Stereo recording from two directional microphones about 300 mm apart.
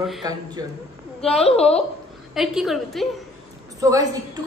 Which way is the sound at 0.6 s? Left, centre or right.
Centre.